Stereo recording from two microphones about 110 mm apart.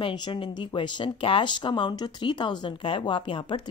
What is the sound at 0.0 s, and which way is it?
Speech, 45° left (ahead or behind).